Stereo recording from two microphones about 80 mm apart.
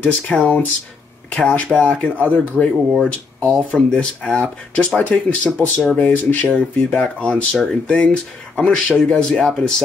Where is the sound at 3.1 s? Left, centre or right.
Centre.